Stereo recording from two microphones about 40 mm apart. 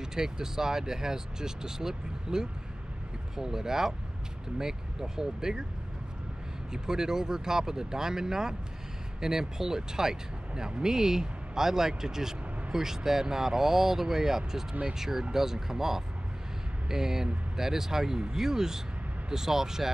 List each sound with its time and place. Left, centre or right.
0.0 s speech: centre
6.7 s speech: centre